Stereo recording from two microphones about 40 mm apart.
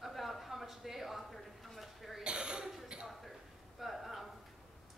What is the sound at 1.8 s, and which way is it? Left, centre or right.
Cough, centre.